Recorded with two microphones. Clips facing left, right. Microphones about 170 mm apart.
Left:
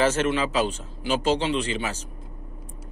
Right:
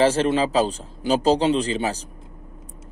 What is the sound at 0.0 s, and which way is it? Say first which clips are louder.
Speech: right 4 dB; 30° right (ahead or behind).